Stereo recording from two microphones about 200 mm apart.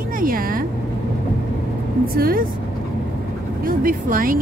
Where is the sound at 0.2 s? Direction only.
45° right (ahead or behind).